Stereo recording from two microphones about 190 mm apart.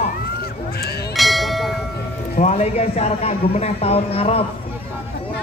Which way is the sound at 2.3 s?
35° left (ahead or behind).